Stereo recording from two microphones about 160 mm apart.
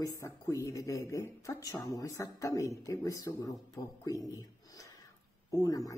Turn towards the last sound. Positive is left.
turn(degrees=20)  # may be behind; listen again after turning